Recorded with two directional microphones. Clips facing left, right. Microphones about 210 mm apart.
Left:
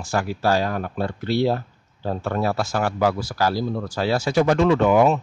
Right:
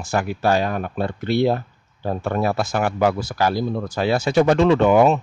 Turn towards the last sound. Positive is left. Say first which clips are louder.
# right 2 dB
turn(degrees=-25)  # may be behind; listen again after turning